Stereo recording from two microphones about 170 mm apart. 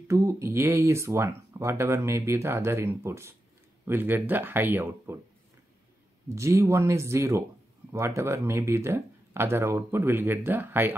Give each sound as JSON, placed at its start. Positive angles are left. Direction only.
{"t": 0.1, "sound": "speech", "side_deg": -15}
{"t": 6.3, "sound": "speech", "side_deg": -15}